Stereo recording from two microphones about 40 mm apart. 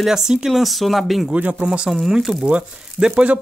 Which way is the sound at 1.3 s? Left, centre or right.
Right.